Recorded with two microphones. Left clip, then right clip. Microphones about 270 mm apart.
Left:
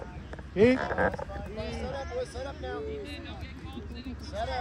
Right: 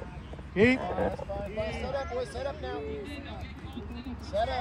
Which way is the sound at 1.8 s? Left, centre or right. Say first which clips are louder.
Right 2 dB; left.